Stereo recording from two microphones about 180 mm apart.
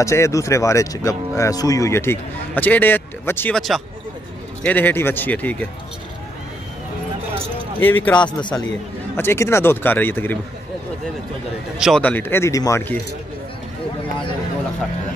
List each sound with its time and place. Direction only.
0.0 s speech: 15° left (ahead or behind)
7.8 s speech: 10° left (ahead or behind)
8.3 s a man's voice: 25° left (ahead or behind)
9.1 s speech: 15° left (ahead or behind)
11.8 s speech: 5° left (ahead or behind)